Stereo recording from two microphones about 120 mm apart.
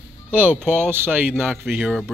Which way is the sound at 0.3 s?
15° right (ahead or behind).